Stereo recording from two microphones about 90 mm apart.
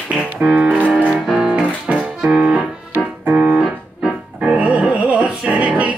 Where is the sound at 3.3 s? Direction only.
10° right (ahead or behind).